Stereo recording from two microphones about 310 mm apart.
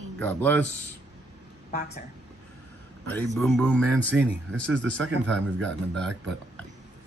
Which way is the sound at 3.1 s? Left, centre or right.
Centre.